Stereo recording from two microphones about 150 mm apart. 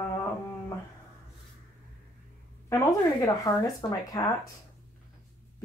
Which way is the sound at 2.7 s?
20° left (ahead or behind).